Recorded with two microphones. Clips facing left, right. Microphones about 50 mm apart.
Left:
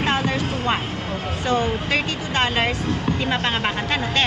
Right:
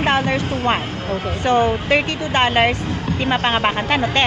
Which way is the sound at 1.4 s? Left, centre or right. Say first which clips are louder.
Right 5 dB; right.